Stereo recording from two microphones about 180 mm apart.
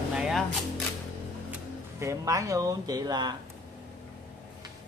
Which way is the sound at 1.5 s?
15° right (ahead or behind).